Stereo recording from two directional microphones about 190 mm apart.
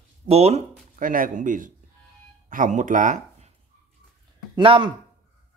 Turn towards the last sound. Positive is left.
turn(degrees=-25)  # may be behind; listen again after turning